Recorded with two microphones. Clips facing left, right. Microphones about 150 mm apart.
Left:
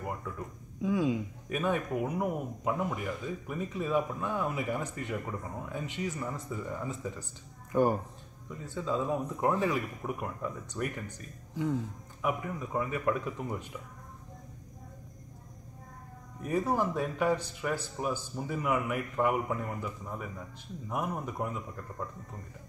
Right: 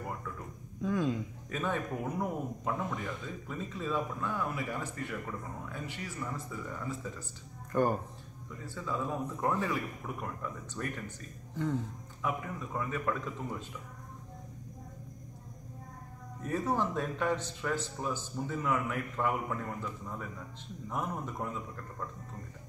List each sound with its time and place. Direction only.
0.8 s speech: 10° left (ahead or behind)
16.4 s speech: 10° left (ahead or behind)